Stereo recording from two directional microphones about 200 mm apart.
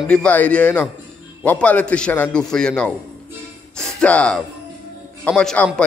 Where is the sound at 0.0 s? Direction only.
5° left (ahead or behind).